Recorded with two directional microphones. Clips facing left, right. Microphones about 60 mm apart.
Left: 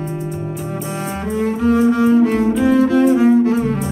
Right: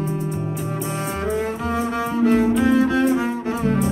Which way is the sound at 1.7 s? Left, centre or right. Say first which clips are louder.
Left 12 dB; centre.